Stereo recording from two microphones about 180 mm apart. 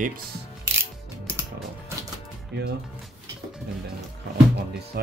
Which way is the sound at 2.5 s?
70° right (ahead or behind).